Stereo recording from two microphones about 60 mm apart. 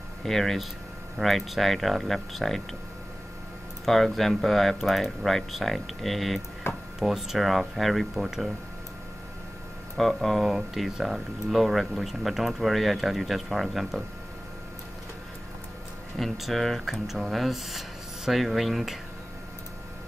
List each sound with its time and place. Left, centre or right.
0.2 s speech: centre
3.8 s speech: centre
6.7 s speech: left
7.0 s speech: centre
9.9 s speech: centre
16.2 s speech: centre